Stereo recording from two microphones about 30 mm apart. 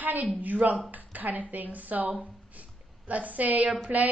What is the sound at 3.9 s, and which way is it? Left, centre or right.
Speech, right.